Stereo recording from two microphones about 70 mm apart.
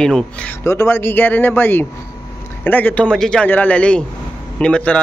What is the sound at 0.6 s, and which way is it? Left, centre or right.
Speech, left.